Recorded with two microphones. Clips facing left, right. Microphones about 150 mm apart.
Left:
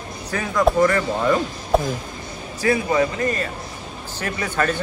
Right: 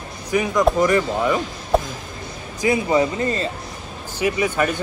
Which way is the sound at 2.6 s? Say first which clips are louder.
Right 1 dB; 20° right (ahead or behind).